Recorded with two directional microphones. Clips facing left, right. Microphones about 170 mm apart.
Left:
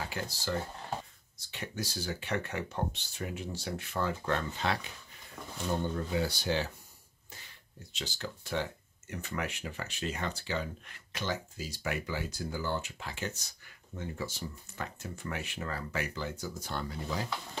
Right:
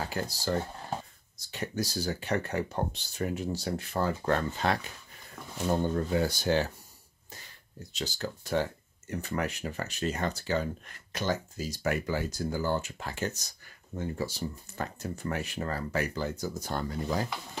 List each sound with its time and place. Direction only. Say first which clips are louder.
0.0 s speech: right 4 dB; 40° right (ahead or behind)
5.9 s speech: right 4 dB; 45° right (ahead or behind)
7.9 s speech: right 5 dB; 40° right (ahead or behind)